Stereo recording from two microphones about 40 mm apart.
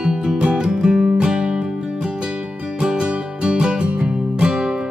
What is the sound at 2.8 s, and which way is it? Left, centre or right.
Music, right.